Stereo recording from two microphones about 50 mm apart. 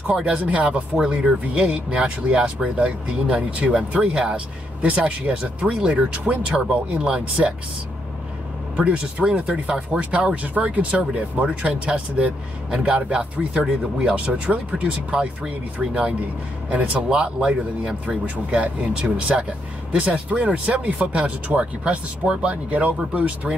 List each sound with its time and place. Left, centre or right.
0.0 s speech: centre
0.9 s speech: centre
8.9 s speech: centre